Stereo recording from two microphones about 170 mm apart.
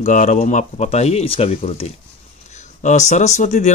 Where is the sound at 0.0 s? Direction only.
45° left (ahead or behind).